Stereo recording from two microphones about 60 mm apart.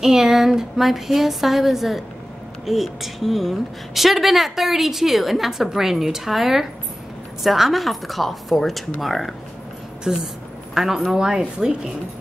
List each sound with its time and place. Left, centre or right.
0.0 s a woman's voice: centre
10.1 s speech: centre